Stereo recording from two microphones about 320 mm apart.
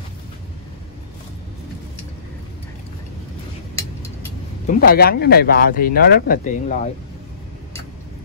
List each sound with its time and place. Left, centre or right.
4.6 s speech: left